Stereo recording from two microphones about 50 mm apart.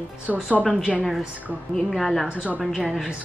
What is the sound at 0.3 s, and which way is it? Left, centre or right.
Speech, right.